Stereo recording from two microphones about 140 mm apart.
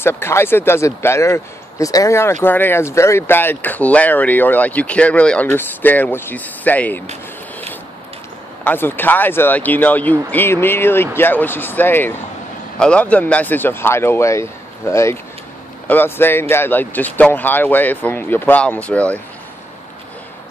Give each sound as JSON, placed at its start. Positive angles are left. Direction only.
{"t": 0.0, "sound": "speech", "side_deg": 15}
{"t": 8.6, "sound": "speech", "side_deg": 15}